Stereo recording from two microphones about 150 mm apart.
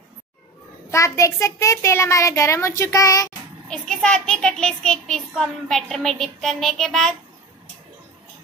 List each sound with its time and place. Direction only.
0.8 s a child's voice: 20° left (ahead or behind)
3.6 s a child's voice: 5° left (ahead or behind)